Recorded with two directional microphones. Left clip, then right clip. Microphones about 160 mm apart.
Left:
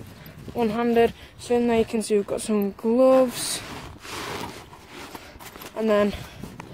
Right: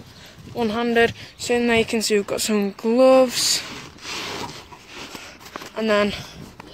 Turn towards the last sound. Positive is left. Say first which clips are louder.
# right 2 dB
turn(degrees=15)  # may be behind; listen again after turning